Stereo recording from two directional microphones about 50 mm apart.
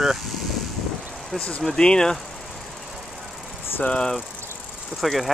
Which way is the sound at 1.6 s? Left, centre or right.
Centre.